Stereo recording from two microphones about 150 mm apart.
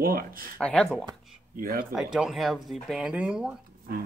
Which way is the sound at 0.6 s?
5° left (ahead or behind).